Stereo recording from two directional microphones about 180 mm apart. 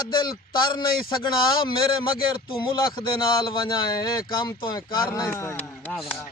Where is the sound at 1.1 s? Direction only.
25° left (ahead or behind).